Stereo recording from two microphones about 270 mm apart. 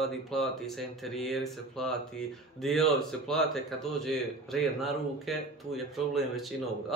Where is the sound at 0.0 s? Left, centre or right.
Centre.